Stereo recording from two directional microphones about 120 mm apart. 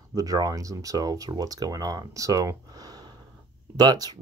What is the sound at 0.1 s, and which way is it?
Speech, 30° right (ahead or behind).